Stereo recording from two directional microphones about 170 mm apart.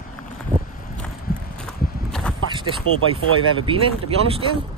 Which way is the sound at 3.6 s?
30° right (ahead or behind).